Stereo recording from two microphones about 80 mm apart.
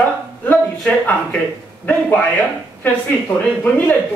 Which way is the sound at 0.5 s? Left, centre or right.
Centre.